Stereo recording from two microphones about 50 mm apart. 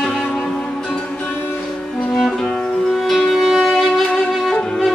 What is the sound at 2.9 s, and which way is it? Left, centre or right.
Music, centre.